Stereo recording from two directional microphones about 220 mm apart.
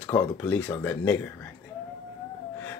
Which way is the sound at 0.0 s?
10° left (ahead or behind).